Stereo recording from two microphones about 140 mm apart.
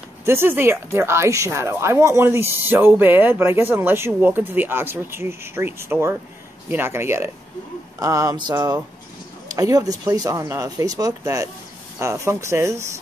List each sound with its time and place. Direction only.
0.2 s speech: 15° right (ahead or behind)